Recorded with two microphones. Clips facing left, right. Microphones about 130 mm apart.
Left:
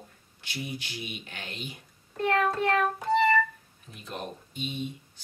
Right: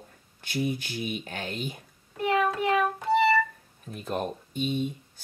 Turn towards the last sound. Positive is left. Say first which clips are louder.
# right 6 dB
turn(degrees=-45)  # may be behind; listen again after turning